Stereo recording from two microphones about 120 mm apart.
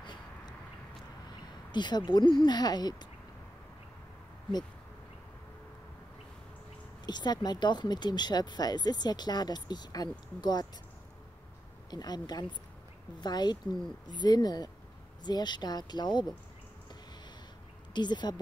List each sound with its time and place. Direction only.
0.0 s a sound: 40° left (ahead or behind)
1.7 s speech: 40° left (ahead or behind)
7.1 s speech: 35° left (ahead or behind)
11.9 s speech: 35° left (ahead or behind)
17.9 s speech: 40° left (ahead or behind)